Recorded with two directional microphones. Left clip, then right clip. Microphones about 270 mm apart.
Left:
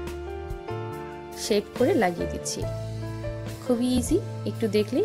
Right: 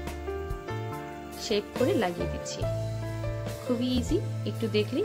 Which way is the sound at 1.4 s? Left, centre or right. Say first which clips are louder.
Left 4 dB; centre.